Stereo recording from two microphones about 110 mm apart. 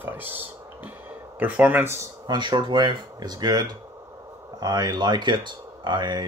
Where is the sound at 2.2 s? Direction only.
45° right (ahead or behind).